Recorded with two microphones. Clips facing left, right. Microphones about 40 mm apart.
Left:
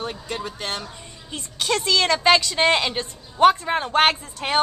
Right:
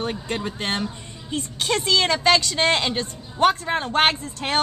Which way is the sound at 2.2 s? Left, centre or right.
Centre.